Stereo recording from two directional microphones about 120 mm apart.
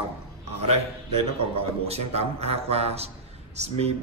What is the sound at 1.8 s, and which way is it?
A man's voice, 60° right (ahead or behind).